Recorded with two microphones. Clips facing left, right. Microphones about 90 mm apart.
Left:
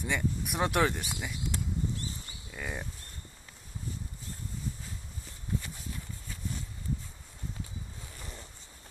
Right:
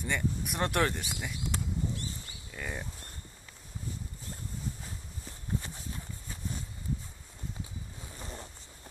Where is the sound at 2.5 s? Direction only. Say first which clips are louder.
Left 1 dB; 5° left (ahead or behind).